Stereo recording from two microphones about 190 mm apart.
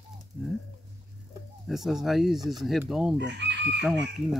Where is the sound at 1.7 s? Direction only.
Centre (ahead or behind).